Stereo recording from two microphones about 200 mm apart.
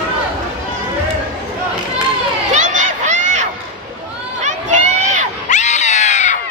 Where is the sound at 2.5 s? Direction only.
35° right (ahead or behind).